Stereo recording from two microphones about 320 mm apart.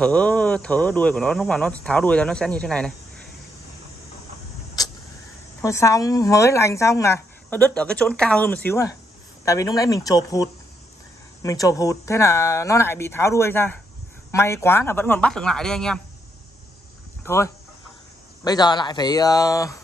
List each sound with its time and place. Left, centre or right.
0.0 s speech: centre
5.6 s speech: centre
17.2 s chicken: centre
18.4 s speech: centre